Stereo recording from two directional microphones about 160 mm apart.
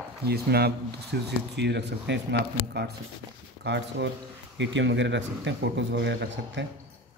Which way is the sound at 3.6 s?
90° right.